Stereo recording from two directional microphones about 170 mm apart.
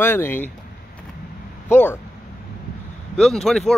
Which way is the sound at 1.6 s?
10° left (ahead or behind).